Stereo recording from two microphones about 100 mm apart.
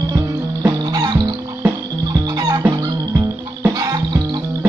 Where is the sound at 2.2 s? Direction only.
40° right (ahead or behind).